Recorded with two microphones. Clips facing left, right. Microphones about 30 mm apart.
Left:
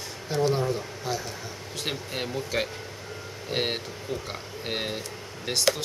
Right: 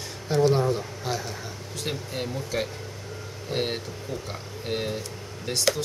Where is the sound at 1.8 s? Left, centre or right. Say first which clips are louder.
Right 1 dB; centre.